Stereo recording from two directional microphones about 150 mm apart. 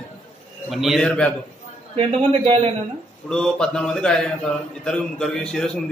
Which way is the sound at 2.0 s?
40° right (ahead or behind).